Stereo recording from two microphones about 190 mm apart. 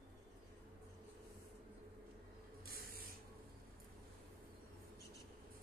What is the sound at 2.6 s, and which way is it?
Spray, 50° right (ahead or behind).